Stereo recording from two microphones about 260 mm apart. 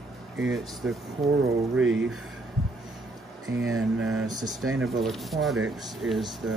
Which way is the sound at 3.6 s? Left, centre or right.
Right.